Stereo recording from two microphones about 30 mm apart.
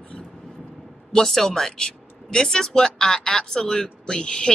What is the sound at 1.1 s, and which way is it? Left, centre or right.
Speech, centre.